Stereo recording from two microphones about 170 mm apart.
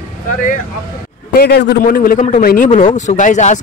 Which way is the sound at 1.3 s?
70° left (ahead or behind).